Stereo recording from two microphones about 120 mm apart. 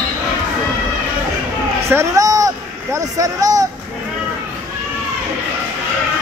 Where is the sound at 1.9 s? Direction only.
25° right (ahead or behind).